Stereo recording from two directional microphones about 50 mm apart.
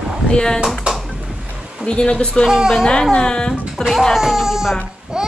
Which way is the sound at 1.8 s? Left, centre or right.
Centre.